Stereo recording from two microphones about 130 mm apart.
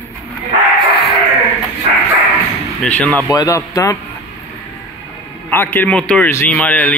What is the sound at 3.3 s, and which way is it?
Speech, 30° left (ahead or behind).